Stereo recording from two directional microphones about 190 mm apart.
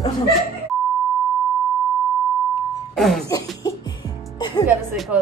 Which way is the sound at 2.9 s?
Centre (ahead or behind).